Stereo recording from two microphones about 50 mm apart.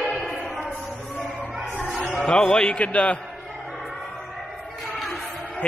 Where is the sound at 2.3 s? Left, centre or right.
Centre.